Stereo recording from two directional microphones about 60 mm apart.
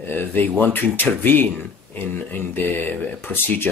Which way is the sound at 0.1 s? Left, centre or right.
Left.